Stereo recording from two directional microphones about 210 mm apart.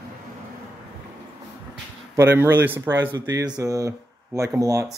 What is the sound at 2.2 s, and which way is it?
Speech, 10° right (ahead or behind).